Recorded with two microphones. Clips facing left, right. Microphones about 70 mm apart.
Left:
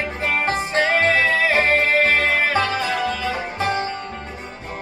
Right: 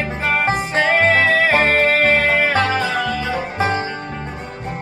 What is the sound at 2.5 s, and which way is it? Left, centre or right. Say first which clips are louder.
Music: right 3 dB; right.